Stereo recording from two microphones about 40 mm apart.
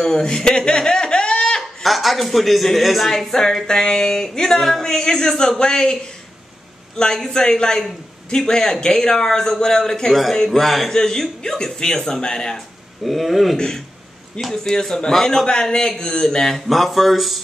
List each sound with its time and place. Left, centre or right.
0.0 s speech: centre
1.6 s speech: centre
7.0 s speech: centre
10.6 s speech: centre
10.9 s speech: centre
12.5 s speech: centre
13.6 s speech: centre
16.6 s speech: centre